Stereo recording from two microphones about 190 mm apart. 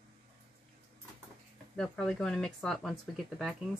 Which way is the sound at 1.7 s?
5° left (ahead or behind).